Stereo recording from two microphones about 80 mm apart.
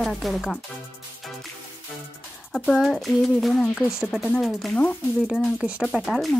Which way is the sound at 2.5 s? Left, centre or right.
Centre.